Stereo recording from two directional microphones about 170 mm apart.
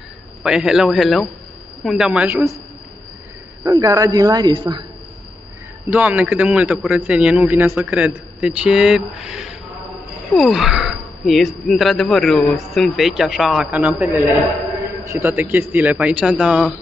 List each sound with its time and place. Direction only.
0.4 s speech: 5° right (ahead or behind)
3.6 s a man's voice: 20° right (ahead or behind)
5.9 s a man's voice: 10° right (ahead or behind)